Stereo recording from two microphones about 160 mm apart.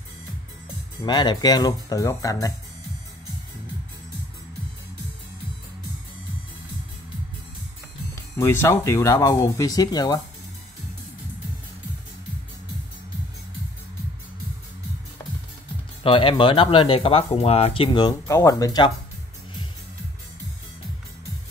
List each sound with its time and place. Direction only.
1.0 s speech: 30° left (ahead or behind)
8.1 s speech: 15° left (ahead or behind)
16.0 s speech: 35° left (ahead or behind)
17.9 s speech: 20° left (ahead or behind)